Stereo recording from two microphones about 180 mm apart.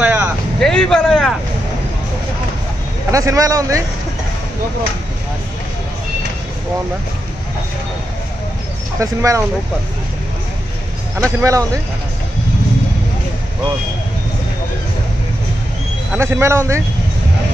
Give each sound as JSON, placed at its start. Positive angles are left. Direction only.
{"t": 0.0, "sound": "vehicle", "side_deg": -5}
{"t": 0.6, "sound": "vehicle", "side_deg": 5}
{"t": 3.1, "sound": "a man's voice", "side_deg": -15}
{"t": 9.0, "sound": "a man's voice", "side_deg": -15}
{"t": 11.4, "sound": "a man's voice", "side_deg": -20}
{"t": 16.2, "sound": "a man's voice", "side_deg": -15}